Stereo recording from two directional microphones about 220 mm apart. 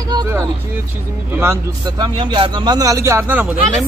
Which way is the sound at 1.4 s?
15° right (ahead or behind).